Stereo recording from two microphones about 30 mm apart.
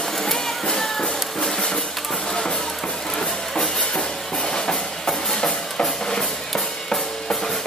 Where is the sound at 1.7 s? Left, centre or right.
Centre.